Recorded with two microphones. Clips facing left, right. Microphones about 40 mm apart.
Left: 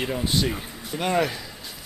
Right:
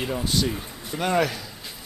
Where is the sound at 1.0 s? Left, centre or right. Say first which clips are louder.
Right 1 dB; centre.